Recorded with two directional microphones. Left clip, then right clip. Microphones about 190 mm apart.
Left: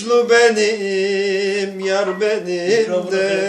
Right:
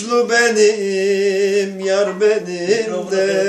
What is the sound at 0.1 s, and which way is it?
Male singing, 20° right (ahead or behind).